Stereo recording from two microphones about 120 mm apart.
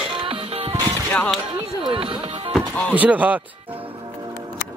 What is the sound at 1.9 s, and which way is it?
Music, 45° right (ahead or behind).